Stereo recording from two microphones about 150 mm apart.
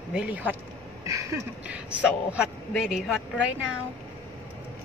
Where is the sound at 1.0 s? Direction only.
20° right (ahead or behind).